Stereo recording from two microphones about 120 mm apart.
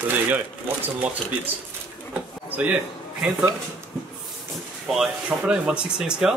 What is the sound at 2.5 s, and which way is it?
Speech, 15° right (ahead or behind).